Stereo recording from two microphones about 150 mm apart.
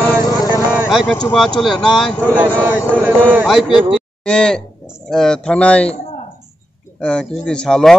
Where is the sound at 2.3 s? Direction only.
10° right (ahead or behind); by 5.9 s 10° left (ahead or behind).